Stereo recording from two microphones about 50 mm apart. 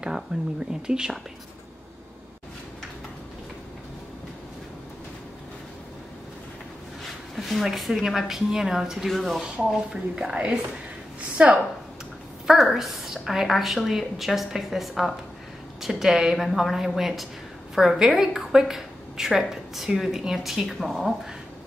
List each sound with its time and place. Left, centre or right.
0.3 s a woman's voice: centre
7.3 s a woman's voice: centre
9.1 s a woman's voice: centre
11.3 s a woman's voice: right
12.4 s a woman's voice: centre